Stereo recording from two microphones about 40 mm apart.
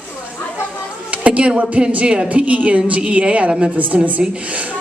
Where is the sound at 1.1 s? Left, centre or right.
Right.